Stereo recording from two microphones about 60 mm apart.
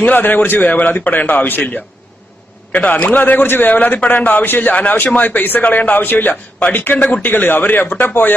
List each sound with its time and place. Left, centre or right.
0.0 s a man's voice: left